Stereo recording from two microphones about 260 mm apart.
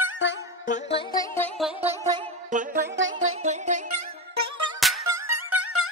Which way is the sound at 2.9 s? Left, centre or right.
Right.